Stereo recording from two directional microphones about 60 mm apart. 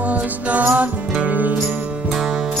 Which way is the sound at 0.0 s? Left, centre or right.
Right.